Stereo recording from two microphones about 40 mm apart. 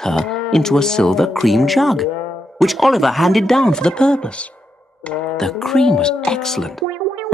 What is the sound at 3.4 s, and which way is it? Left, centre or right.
Speech, centre.